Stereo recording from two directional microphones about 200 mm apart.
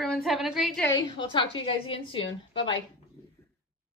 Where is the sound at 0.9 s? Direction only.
20° left (ahead or behind).